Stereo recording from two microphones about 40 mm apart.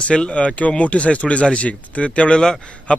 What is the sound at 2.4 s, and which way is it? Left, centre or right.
Speech, centre.